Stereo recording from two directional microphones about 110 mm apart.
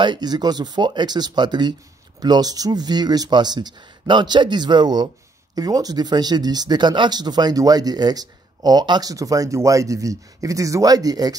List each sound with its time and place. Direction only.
0.0 s speech: 40° right (ahead or behind)